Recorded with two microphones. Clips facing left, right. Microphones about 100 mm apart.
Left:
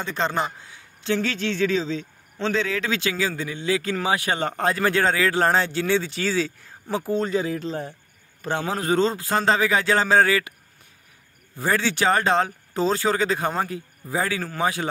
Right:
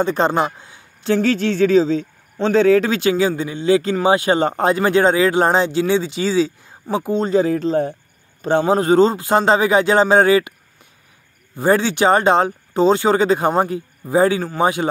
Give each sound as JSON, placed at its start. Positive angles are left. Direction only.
{"t": 0.0, "sound": "speech", "side_deg": -35}
{"t": 7.4, "sound": "speech", "side_deg": -40}
{"t": 8.4, "sound": "speech", "side_deg": -25}
{"t": 11.5, "sound": "speech", "side_deg": -30}